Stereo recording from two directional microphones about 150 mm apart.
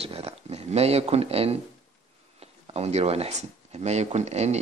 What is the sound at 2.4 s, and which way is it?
Speech, 45° right (ahead or behind).